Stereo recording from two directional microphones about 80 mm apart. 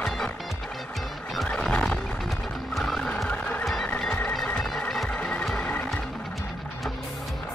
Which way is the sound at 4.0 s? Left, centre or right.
Centre.